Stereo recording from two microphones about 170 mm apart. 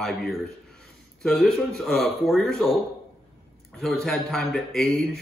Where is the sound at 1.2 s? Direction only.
5° left (ahead or behind).